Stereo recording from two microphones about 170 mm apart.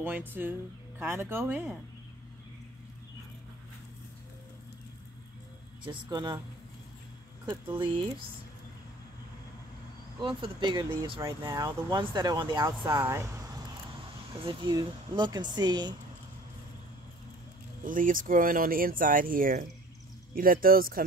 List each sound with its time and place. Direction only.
0.0 s speech: 10° right (ahead or behind)
5.9 s speech: 25° right (ahead or behind)
7.4 s speech: 30° right (ahead or behind)
10.2 s speech: 30° right (ahead or behind)
14.3 s speech: 30° right (ahead or behind)
17.8 s speech: 55° right (ahead or behind)